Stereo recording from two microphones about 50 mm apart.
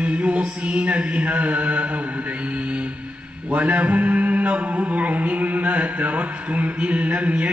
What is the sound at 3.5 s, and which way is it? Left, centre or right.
Mantra, right.